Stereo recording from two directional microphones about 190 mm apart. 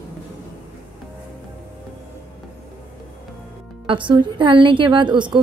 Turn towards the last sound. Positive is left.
turn(degrees=-25)  # may be behind; listen again after turning